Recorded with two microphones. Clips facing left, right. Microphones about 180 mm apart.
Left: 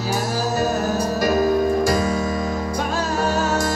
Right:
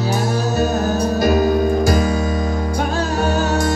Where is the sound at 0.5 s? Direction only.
65° right (ahead or behind).